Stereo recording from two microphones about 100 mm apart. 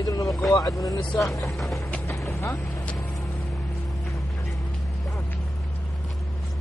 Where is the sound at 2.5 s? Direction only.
10° left (ahead or behind).